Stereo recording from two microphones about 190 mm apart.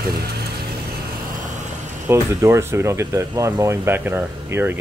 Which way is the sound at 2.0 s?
15° right (ahead or behind).